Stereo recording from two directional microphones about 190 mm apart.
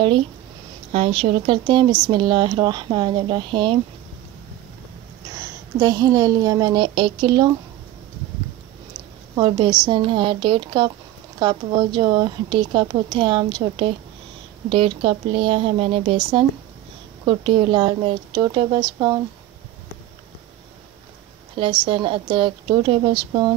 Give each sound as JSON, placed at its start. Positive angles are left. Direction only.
{"t": 0.9, "sound": "speech", "side_deg": -35}
{"t": 5.8, "sound": "speech", "side_deg": -20}
{"t": 9.3, "sound": "speech", "side_deg": -20}
{"t": 21.5, "sound": "speech", "side_deg": -25}